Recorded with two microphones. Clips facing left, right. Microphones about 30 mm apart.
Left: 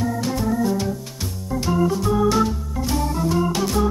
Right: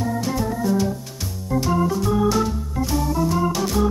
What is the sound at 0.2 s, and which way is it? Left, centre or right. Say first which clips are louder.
Organ: left 2 dB; centre.